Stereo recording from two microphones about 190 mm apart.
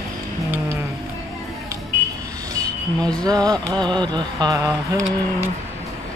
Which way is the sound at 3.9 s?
25° right (ahead or behind).